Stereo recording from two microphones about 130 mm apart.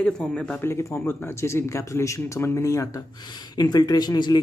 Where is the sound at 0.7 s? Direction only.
20° left (ahead or behind).